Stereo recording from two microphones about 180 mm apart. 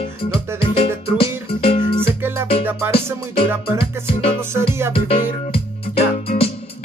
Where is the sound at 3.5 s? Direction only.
15° right (ahead or behind).